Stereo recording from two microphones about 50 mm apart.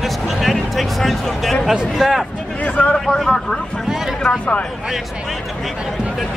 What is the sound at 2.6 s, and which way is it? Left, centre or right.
Speech, left.